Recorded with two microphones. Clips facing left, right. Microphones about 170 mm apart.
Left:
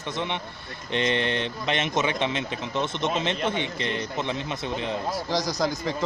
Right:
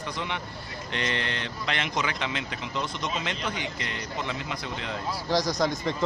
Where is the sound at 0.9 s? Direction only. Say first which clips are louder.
Left 6 dB; 20° left (ahead or behind).